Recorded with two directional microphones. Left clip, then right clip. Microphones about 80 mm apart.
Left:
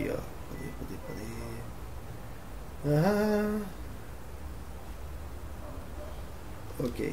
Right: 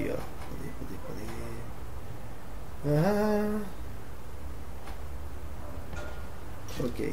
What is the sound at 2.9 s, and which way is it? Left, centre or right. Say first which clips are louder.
Speech: even; centre.